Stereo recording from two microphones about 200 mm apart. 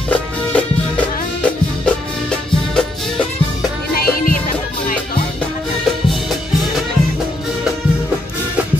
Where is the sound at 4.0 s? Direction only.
50° left (ahead or behind).